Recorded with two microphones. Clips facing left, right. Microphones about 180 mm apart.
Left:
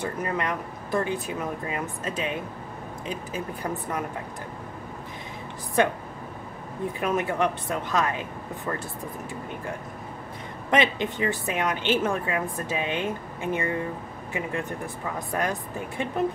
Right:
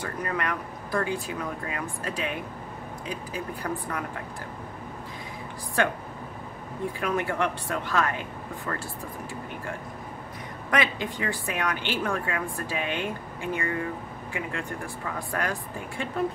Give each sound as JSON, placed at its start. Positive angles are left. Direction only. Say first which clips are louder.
{"t": 0.0, "sound": "a woman's voice", "louder": "left 2 dB", "side_deg": 20}
{"t": 5.8, "sound": "a woman's voice", "louder": "left 3 dB", "side_deg": 20}
{"t": 7.0, "sound": "a woman's voice", "louder": "left 3 dB", "side_deg": 20}
{"t": 10.7, "sound": "a woman's voice", "louder": "left 4 dB", "side_deg": 20}